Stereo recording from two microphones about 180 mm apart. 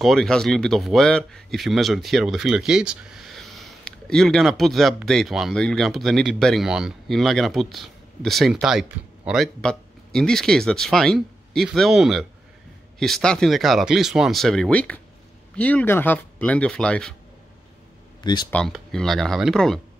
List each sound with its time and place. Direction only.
0.0 s speech: centre (ahead or behind)
18.2 s speech: 25° left (ahead or behind)
18.5 s speech: 5° left (ahead or behind)